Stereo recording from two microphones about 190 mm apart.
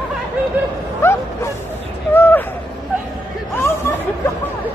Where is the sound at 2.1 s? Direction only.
10° left (ahead or behind).